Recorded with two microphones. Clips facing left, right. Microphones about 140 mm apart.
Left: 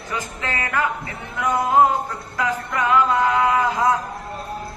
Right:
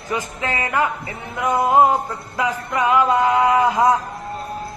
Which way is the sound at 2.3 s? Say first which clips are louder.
Right 2 dB; 15° right (ahead or behind).